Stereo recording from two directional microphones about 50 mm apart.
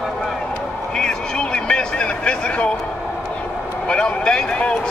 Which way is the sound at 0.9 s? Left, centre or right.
Centre.